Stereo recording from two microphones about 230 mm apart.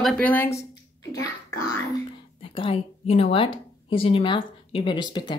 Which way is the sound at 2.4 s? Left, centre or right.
Left.